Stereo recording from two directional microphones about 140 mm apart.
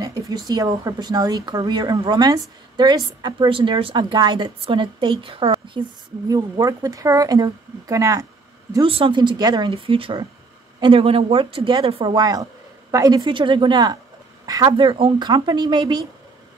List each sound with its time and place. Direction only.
0.0 s a woman's voice: 25° right (ahead or behind)
6.2 s speech: 25° right (ahead or behind)
8.8 s a woman's voice: 40° right (ahead or behind)